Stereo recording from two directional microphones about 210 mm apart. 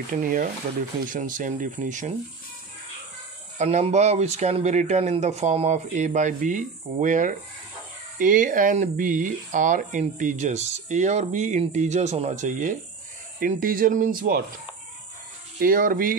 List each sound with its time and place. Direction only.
0.1 s speech: 40° right (ahead or behind)
3.5 s speech: 30° right (ahead or behind)
15.6 s speech: 40° right (ahead or behind)